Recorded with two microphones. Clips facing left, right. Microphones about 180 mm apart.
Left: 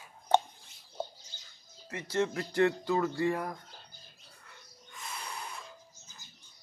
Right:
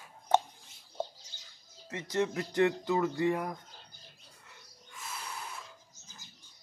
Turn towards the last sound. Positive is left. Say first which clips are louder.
# left 1 dB
turn(degrees=-5)  # may be behind; listen again after turning